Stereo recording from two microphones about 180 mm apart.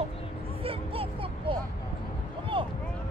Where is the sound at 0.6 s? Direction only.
30° right (ahead or behind).